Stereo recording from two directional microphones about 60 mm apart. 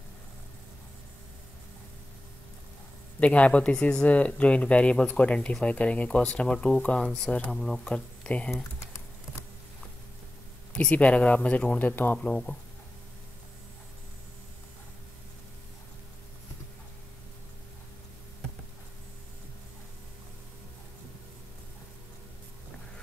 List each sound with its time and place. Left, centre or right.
3.2 s speech: left; by 7.8 s centre
7.8 s speech: centre
10.7 s speech: centre
11.9 s speech: left
12.2 s speech: centre